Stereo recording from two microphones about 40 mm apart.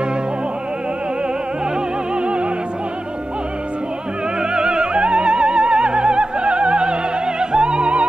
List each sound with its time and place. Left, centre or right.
2.1 s music: right
4.4 s music: right